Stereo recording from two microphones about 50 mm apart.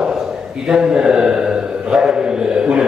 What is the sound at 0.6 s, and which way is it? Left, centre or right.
Speech, centre.